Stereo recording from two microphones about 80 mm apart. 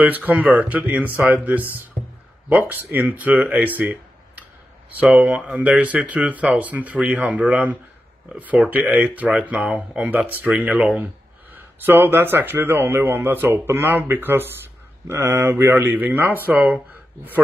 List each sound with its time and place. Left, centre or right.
0.0 s speech: right
11.5 s speech: right
16.9 s a sound: right